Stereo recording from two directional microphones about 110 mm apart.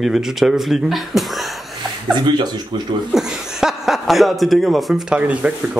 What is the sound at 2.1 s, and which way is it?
Speech, 40° right (ahead or behind).